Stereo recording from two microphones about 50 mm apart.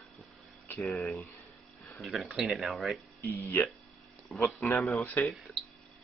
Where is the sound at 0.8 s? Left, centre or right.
Centre.